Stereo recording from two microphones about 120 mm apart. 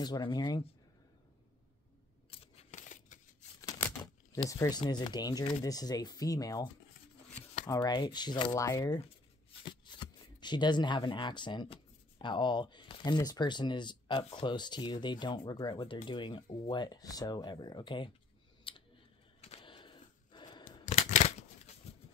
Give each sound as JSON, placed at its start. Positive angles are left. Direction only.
{"t": 0.0, "sound": "speech", "side_deg": 35}
{"t": 2.3, "sound": "coin", "side_deg": 55}
{"t": 2.7, "sound": "scissors", "side_deg": 90}
{"t": 4.5, "sound": "speech", "side_deg": 30}
{"t": 18.7, "sound": "a sound", "side_deg": 45}
{"t": 20.8, "sound": "a sound", "side_deg": 75}